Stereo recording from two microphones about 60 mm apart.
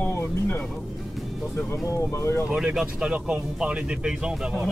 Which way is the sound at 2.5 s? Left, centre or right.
Centre.